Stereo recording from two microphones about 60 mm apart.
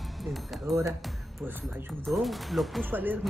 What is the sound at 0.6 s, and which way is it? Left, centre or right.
Speech, right.